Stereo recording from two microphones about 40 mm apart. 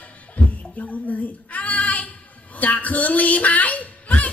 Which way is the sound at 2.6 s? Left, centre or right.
Left.